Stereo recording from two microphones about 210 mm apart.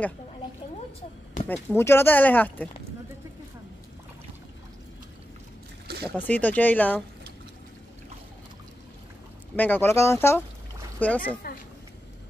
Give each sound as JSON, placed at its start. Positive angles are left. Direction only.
{"t": 1.5, "sound": "speech", "side_deg": 10}
{"t": 6.1, "sound": "speech", "side_deg": 5}
{"t": 9.6, "sound": "speech", "side_deg": 10}